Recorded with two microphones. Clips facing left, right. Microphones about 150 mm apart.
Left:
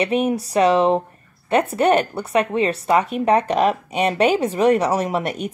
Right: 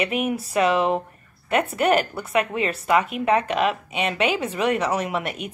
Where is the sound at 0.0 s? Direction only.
30° left (ahead or behind).